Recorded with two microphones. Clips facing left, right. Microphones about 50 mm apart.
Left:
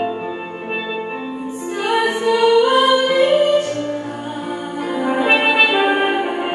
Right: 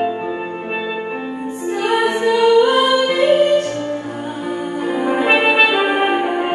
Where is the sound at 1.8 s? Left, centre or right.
Right.